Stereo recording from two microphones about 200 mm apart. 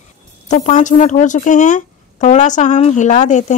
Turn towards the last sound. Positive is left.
turn(degrees=35)  # may be behind; listen again after turning